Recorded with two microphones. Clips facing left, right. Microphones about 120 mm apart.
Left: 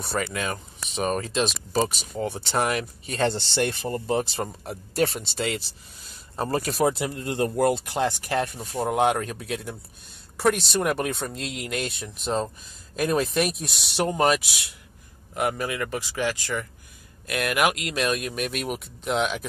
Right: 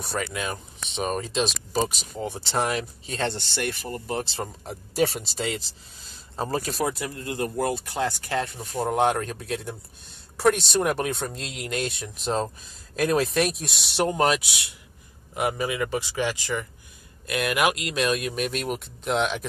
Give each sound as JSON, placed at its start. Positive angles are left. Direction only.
{"t": 0.0, "sound": "speech", "side_deg": 0}
{"t": 3.3, "sound": "speech", "side_deg": 30}
{"t": 4.4, "sound": "speech", "side_deg": 0}
{"t": 6.8, "sound": "speech", "side_deg": 25}
{"t": 8.5, "sound": "speech", "side_deg": 0}